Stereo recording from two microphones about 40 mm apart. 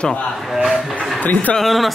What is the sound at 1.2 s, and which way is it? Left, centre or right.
Speech, left.